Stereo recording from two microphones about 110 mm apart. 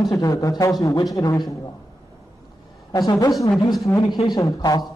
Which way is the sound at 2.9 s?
35° left (ahead or behind).